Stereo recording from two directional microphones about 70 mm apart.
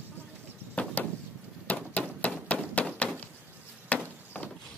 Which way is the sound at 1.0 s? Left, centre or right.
Left.